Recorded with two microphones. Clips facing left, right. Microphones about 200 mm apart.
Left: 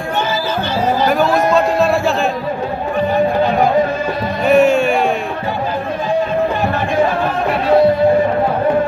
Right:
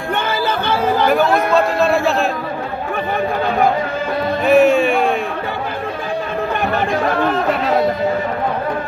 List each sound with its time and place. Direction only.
0.5 s music: 55° right (ahead or behind)
1.5 s speech: centre (ahead or behind)
4.5 s a sound: centre (ahead or behind)